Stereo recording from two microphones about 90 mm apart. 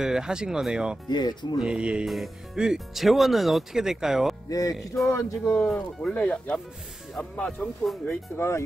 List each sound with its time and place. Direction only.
0.0 s speech: 5° right (ahead or behind)
1.0 s speech: 55° left (ahead or behind)
1.6 s speech: 10° right (ahead or behind)
2.0 s speech: centre (ahead or behind)
4.5 s speech: 40° left (ahead or behind)
5.0 s speech: 30° left (ahead or behind)
5.7 s speech: 10° left (ahead or behind)
8.1 s speech: 30° left (ahead or behind)